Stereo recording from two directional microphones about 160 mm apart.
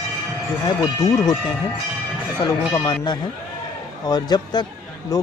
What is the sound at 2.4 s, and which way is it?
Speech, 25° left (ahead or behind).